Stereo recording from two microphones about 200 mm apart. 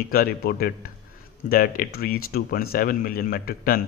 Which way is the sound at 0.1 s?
50° left (ahead or behind).